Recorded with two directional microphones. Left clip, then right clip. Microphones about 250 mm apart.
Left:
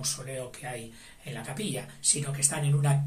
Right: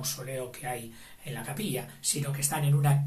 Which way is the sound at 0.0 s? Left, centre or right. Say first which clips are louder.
Even; centre.